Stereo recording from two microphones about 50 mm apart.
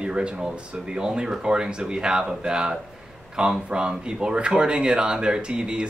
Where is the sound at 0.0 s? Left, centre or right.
Centre.